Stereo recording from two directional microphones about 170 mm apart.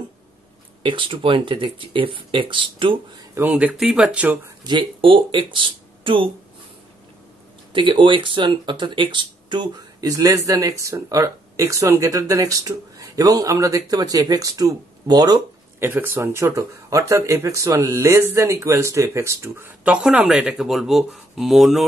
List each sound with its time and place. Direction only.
0.8 s speech: 30° right (ahead or behind)
3.3 s speech: 10° right (ahead or behind)
4.6 s speech: 30° right (ahead or behind)
7.7 s speech: 30° right (ahead or behind)
15.8 s speech: 15° right (ahead or behind)